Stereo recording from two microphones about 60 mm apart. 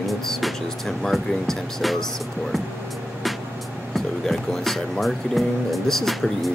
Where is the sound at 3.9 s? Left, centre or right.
Centre.